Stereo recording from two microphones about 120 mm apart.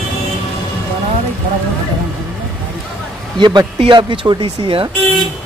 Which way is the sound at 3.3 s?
40° right (ahead or behind).